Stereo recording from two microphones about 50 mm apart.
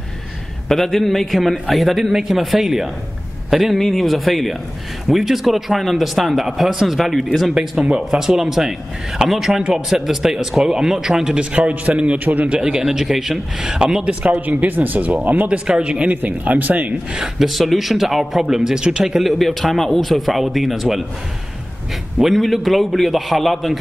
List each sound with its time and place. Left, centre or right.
0.7 s speech: centre
11.3 s a man's voice: right
12.5 s speech: centre
14.0 s a man's voice: right
14.4 s speech: right
15.4 s a man's voice: centre
16.2 s speech: right
17.1 s speech: centre
17.5 s speech: centre
19.3 s speech: centre
22.2 s speech: centre